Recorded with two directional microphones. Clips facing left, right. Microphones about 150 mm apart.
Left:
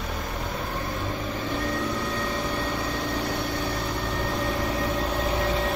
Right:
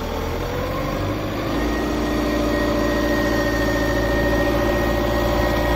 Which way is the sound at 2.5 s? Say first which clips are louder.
Right 10 dB; 75° right (ahead or behind).